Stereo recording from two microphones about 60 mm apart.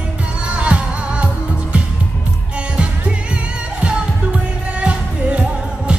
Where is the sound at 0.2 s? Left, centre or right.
Centre.